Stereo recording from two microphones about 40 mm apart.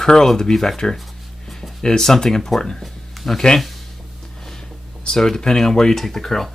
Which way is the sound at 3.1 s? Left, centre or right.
Centre.